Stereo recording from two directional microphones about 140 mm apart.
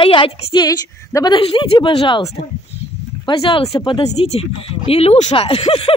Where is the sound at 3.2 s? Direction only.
40° left (ahead or behind).